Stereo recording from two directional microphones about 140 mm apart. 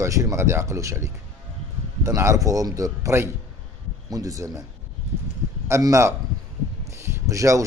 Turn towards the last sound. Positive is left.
turn(degrees=-20)  # may be behind; listen again after turning